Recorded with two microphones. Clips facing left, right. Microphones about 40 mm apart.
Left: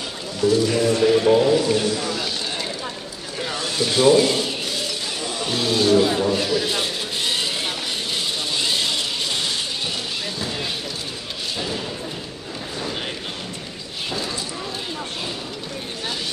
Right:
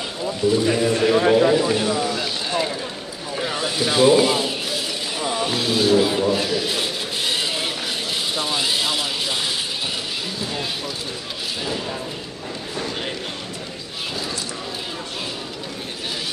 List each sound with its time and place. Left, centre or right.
0.4 s speech: centre
1.5 s a sound: centre
5.2 s vehicle: centre